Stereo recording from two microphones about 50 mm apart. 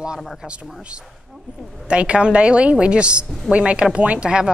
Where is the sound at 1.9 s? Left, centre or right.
Right.